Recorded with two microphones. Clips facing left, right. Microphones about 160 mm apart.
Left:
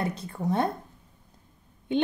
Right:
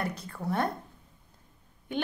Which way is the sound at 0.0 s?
25° left (ahead or behind).